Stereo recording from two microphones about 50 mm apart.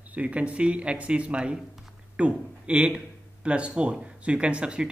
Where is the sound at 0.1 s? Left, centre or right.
Right.